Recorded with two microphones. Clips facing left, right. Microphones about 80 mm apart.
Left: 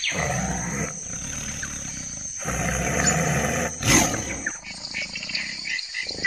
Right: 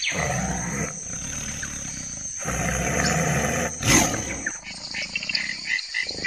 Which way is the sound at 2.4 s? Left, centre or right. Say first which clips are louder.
Even; centre.